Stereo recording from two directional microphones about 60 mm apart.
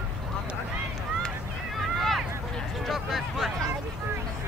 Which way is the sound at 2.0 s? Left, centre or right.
Centre.